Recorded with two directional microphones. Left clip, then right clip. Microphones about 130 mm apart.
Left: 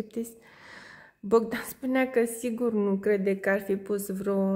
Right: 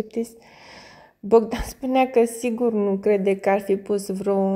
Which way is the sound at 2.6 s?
Centre (ahead or behind).